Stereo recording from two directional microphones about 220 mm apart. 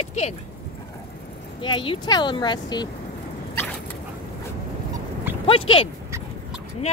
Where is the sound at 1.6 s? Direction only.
25° left (ahead or behind).